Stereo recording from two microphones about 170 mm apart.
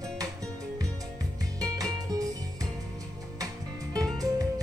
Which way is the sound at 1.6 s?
20° right (ahead or behind).